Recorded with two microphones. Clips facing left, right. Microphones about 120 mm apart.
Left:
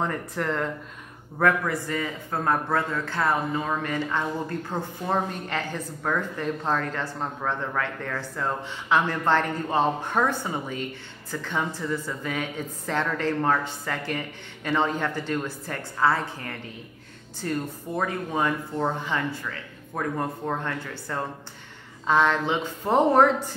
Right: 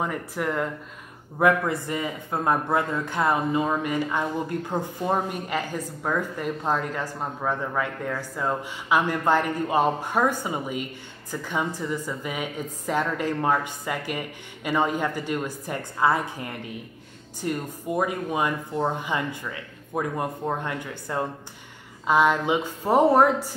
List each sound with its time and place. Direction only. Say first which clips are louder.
0.0 s speech: even; 10° right (ahead or behind)
1.4 s a man's voice: right 2 dB; 25° right (ahead or behind)